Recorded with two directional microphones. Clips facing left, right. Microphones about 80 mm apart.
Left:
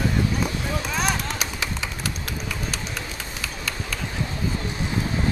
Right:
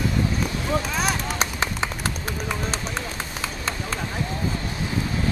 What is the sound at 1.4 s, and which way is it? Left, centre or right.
Run, right.